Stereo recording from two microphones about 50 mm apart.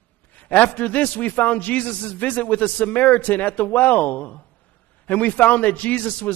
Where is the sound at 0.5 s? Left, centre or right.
Left.